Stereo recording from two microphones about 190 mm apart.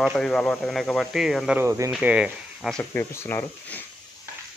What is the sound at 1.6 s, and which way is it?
Speech, 15° right (ahead or behind).